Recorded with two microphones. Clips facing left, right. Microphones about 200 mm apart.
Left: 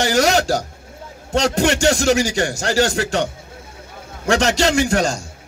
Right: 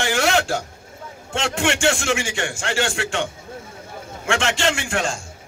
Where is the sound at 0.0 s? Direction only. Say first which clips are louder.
Left 4 dB; 40° left (ahead or behind).